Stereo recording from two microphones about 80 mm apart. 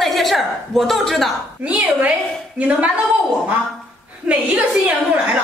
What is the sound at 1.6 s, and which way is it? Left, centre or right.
Speech, centre.